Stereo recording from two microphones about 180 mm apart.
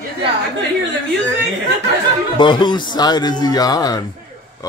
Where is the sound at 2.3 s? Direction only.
25° left (ahead or behind).